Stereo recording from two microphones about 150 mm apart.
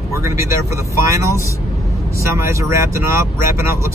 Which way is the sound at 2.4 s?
20° right (ahead or behind).